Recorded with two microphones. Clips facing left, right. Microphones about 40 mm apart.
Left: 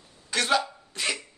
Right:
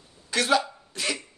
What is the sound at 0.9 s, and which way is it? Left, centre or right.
Cough, centre.